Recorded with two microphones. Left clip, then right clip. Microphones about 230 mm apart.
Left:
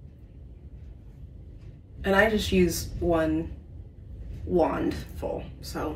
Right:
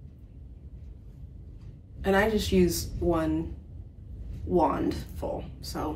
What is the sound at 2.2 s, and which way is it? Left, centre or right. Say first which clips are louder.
A woman's voice: left 5 dB; centre.